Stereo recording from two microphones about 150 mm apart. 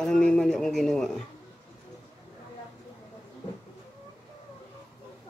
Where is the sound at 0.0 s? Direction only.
5° left (ahead or behind).